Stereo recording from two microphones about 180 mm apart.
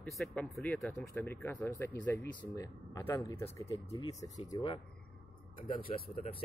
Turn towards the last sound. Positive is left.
turn(degrees=30)  # may be behind; listen again after turning